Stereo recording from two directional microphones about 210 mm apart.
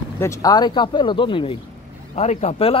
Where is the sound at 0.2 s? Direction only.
15° left (ahead or behind).